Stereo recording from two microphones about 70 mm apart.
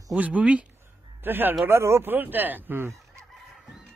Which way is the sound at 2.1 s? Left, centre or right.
Right.